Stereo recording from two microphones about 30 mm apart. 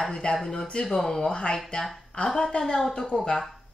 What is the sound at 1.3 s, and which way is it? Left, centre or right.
Speech, left.